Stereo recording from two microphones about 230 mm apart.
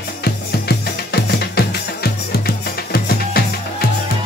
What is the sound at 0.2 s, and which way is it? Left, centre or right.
Music, left.